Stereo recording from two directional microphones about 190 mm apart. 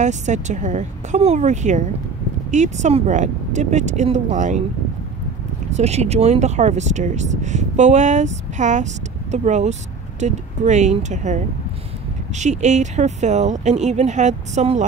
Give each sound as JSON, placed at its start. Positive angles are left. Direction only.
{"t": 0.0, "sound": "speech", "side_deg": -40}
{"t": 5.7, "sound": "speech", "side_deg": -35}